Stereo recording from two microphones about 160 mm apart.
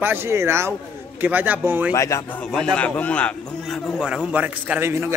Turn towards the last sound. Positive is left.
turn(degrees=-15)  # may be behind; listen again after turning